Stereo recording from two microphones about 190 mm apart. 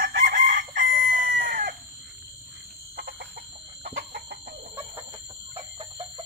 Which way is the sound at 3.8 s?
50° right (ahead or behind).